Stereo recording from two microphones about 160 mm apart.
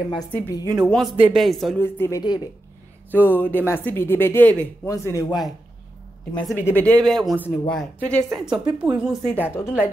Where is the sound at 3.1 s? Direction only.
10° left (ahead or behind).